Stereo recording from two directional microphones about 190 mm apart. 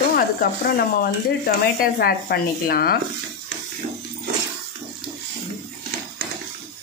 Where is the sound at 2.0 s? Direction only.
55° left (ahead or behind).